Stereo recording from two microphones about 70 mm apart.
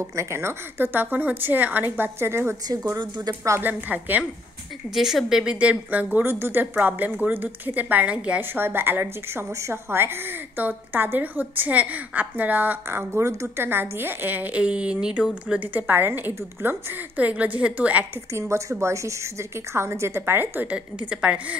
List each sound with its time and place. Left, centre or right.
0.1 s a woman's voice: right
2.1 s a woman's voice: right
3.6 s a woman's voice: right
4.9 s a woman's voice: centre; by 8.5 s right
8.5 s a woman's voice: right
18.3 s a woman's voice: right
20.7 s a woman's voice: centre